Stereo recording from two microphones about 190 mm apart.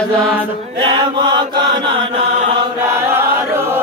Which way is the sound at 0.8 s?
25° right (ahead or behind).